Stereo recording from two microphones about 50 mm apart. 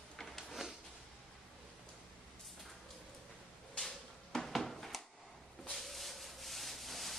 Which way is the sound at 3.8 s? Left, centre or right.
Centre.